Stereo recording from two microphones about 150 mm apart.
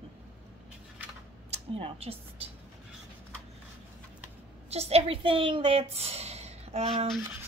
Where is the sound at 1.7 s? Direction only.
40° right (ahead or behind).